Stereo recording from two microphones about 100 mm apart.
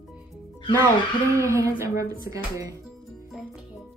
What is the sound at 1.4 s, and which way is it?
Speech, 30° right (ahead or behind).